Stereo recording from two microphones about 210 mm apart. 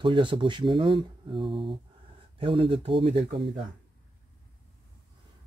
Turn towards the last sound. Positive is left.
turn(degrees=-25)  # may be behind; listen again after turning